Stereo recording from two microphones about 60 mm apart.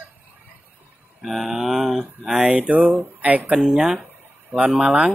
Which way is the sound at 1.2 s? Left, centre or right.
Centre.